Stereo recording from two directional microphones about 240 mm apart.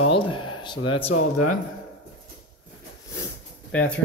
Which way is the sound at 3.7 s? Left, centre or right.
Centre.